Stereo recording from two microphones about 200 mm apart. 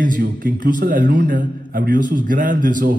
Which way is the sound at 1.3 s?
40° right (ahead or behind).